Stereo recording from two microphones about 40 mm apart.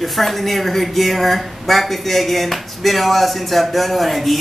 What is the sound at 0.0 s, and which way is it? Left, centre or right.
Speech, centre.